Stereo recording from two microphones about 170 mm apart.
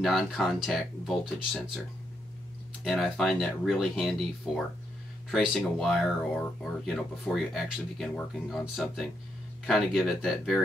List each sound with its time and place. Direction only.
0.0 s speech: centre (ahead or behind)
2.8 s speech: centre (ahead or behind)
5.3 s speech: centre (ahead or behind)